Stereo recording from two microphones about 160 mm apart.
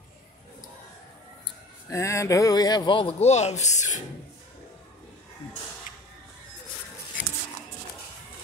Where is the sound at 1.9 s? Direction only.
20° left (ahead or behind); by 4.0 s 50° left (ahead or behind).